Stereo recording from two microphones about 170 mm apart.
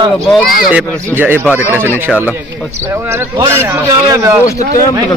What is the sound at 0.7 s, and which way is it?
A man's voice, 10° right (ahead or behind).